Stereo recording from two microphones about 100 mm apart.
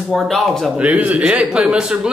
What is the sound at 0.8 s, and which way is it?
Speech, 15° right (ahead or behind).